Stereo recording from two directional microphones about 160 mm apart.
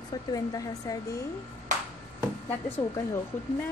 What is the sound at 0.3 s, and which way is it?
Speech, 20° left (ahead or behind).